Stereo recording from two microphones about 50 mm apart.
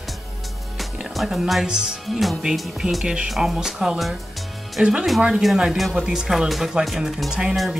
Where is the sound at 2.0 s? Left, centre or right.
Centre.